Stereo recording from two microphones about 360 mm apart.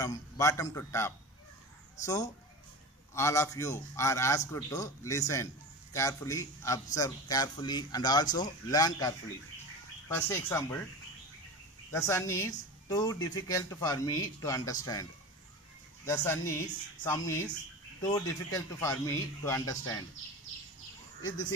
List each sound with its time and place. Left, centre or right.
0.0 s a woman's voice: centre
11.9 s a woman's voice: centre
16.1 s a woman's voice: centre